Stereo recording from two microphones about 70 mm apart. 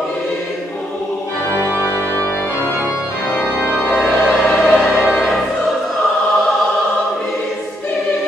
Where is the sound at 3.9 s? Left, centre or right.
Centre.